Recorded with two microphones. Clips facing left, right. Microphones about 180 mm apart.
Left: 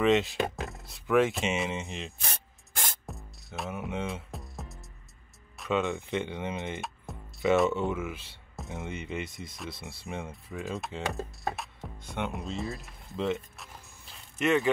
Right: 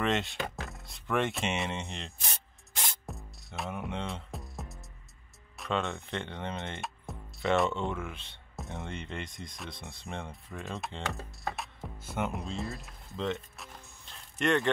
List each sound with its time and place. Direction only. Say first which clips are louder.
0.0 s speech: left 6 dB; centre (ahead or behind)
2.2 s rub: left 2 dB; 50° left (ahead or behind)
3.1 s music: left 1 dB; centre (ahead or behind)
5.6 s speech: left 4 dB; 5° left (ahead or behind)
11.4 s music: right 1 dB; centre (ahead or behind)